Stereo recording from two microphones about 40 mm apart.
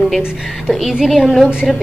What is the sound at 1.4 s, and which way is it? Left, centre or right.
Speech, right.